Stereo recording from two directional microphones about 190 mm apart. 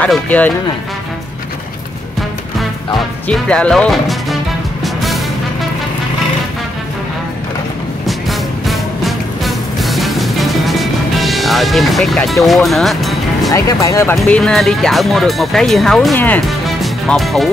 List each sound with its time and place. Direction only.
0.0 s speech: 5° left (ahead or behind)
3.3 s speech: 5° left (ahead or behind)
4.8 s music: centre (ahead or behind)
8.1 s music: centre (ahead or behind)
12.4 s speech: centre (ahead or behind)
13.5 s speech: 20° left (ahead or behind)
14.1 s speech: 5° left (ahead or behind)